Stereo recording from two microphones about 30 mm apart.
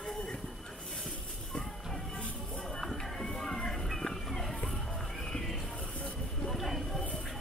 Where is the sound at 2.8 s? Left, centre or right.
Centre.